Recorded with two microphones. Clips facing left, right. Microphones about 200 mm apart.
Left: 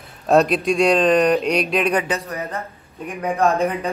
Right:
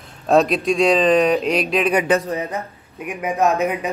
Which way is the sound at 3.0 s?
5° right (ahead or behind).